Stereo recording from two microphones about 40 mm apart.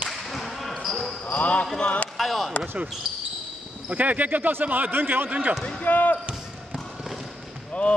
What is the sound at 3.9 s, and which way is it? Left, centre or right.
Speech, right.